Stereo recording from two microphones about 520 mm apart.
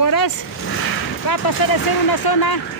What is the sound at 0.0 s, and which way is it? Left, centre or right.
Vehicle, left.